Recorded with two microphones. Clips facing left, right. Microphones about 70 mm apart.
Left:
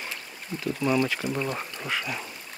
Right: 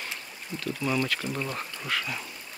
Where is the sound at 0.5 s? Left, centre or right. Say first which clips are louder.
Left 2 dB; left.